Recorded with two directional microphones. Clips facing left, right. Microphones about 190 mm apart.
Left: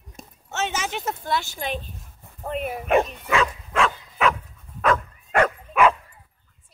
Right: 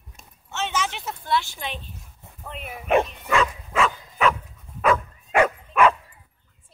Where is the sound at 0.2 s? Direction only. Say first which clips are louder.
Left 2 dB; 45° left (ahead or behind).